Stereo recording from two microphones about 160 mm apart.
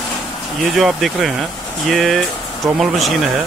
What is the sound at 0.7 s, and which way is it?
Speech, centre (ahead or behind).